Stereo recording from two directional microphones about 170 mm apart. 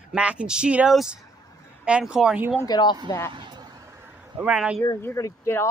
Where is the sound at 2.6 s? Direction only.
25° left (ahead or behind).